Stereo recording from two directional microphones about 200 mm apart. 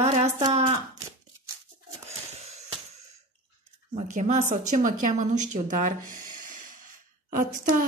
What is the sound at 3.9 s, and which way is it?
A woman's voice, 35° right (ahead or behind).